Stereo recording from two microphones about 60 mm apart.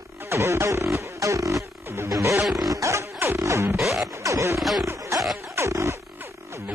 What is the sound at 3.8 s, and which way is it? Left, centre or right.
Music, centre.